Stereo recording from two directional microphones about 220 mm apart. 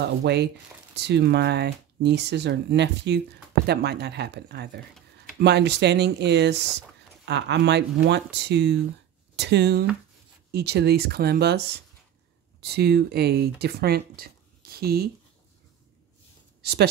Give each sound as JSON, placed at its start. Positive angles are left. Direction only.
{"t": 0.0, "sound": "speech", "side_deg": -50}